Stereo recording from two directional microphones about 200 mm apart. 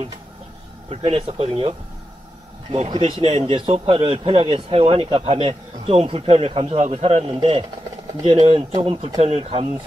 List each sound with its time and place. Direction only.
0.8 s speech: 30° right (ahead or behind)